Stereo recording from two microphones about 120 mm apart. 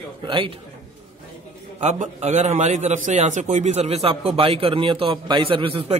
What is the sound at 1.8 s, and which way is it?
A man's voice, 75° right (ahead or behind).